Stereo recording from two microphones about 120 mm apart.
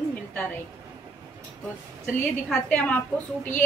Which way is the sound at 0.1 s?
15° left (ahead or behind).